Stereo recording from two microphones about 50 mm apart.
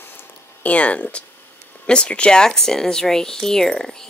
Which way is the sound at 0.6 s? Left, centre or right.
Left.